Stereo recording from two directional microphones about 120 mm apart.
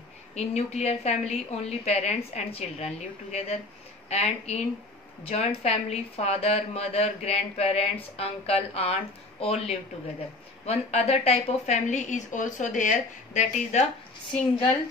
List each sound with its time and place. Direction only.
0.3 s a woman's voice: 65° left (ahead or behind)